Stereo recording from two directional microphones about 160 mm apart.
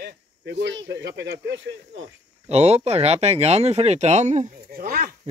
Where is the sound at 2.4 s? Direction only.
40° right (ahead or behind).